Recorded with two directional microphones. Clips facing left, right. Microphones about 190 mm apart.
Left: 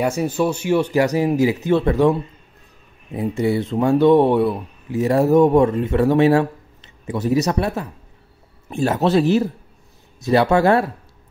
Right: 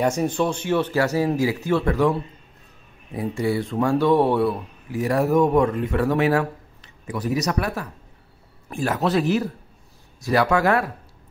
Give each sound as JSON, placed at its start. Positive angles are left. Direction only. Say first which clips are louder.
{"t": 0.0, "sound": "speech", "louder": "left 2 dB", "side_deg": 10}